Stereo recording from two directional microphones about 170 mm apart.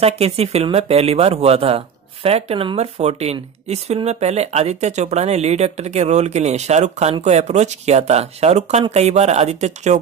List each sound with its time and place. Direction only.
0.0 s speech: 35° right (ahead or behind)